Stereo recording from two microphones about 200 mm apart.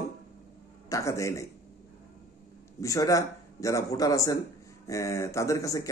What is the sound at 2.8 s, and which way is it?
A man's voice, 15° left (ahead or behind).